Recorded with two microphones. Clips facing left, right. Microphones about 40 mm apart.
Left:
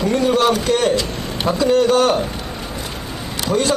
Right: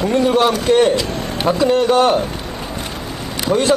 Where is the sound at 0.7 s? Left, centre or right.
Right.